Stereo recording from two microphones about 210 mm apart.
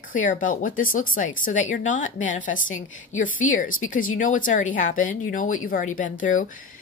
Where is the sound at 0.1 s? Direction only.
40° left (ahead or behind).